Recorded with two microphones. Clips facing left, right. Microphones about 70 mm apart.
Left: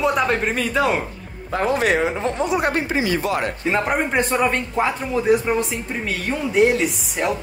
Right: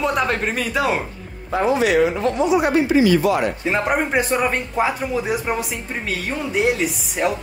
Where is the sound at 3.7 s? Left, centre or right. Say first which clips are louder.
Even; centre.